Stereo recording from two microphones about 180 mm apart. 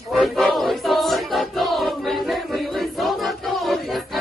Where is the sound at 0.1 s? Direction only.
Centre (ahead or behind).